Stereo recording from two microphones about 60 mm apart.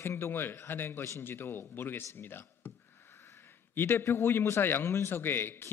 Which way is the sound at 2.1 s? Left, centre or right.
Left.